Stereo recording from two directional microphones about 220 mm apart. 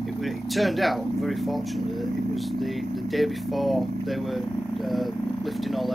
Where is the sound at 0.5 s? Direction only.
Centre (ahead or behind).